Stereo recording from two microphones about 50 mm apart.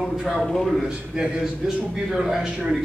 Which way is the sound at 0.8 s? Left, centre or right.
Centre.